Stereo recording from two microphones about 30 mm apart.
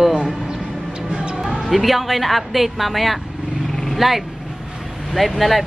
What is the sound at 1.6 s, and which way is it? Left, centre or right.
Speech, centre.